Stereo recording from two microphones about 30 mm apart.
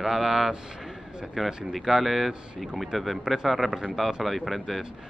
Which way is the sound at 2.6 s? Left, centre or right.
Centre.